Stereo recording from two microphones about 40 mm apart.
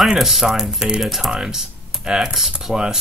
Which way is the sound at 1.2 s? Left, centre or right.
Centre.